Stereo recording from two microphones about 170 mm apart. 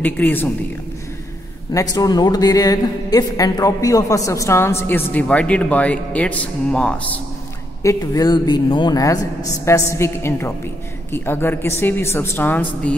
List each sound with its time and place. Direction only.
0.0 s a woman's voice: 10° left (ahead or behind)
1.7 s a woman's voice: 20° left (ahead or behind)
7.8 s a woman's voice: 20° left (ahead or behind)